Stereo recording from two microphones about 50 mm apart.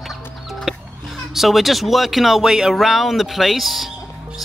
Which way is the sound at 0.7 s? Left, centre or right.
Centre.